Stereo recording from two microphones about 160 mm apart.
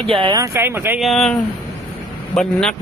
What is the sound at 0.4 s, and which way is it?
Speech, 15° right (ahead or behind).